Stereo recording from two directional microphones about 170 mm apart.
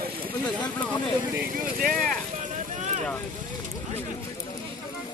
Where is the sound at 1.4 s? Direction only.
55° right (ahead or behind).